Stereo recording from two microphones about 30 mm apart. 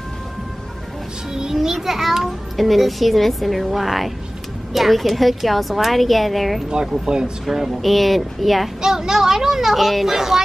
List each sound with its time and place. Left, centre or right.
1.5 s a child's voice: centre
7.1 s speech: right
7.8 s a child's voice: centre
8.8 s speech: centre
10.0 s speech: centre